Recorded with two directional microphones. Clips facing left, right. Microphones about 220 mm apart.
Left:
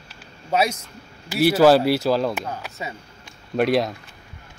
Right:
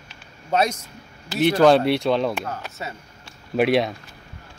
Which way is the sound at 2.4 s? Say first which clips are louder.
Even; 15° left (ahead or behind).